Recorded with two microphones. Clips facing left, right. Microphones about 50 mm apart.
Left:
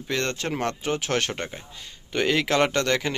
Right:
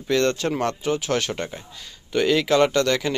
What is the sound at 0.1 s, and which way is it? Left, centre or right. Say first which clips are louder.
Speech: right 6 dB; centre.